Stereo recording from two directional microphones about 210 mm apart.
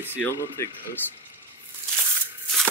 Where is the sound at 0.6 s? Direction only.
15° left (ahead or behind).